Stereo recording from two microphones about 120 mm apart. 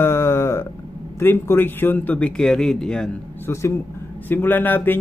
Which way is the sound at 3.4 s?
20° left (ahead or behind).